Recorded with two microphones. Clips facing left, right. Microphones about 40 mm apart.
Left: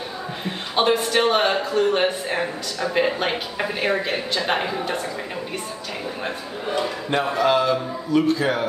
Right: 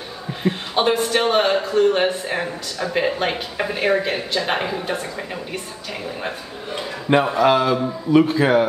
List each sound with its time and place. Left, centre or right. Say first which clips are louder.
0.4 s a man's voice: right 2 dB; centre
6.7 s a man's voice: right 4 dB; centre
8.1 s a man's voice: right 4 dB; right